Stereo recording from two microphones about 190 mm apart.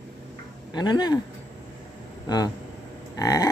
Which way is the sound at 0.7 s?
20° left (ahead or behind).